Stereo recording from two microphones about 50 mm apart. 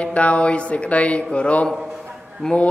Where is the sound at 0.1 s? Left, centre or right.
Left.